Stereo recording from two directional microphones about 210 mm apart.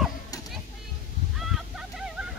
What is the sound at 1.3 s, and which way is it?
Fowl, centre (ahead or behind).